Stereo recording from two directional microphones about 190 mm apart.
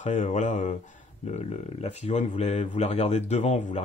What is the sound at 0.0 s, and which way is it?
Speech, 40° left (ahead or behind).